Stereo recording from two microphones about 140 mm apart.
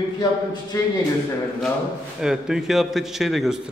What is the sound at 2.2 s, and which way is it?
Speech, 5° right (ahead or behind).